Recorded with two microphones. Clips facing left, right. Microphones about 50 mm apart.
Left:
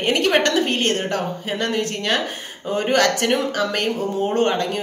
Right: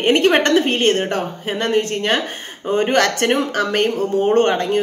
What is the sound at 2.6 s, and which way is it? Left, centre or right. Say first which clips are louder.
Speech: right 2 dB; right.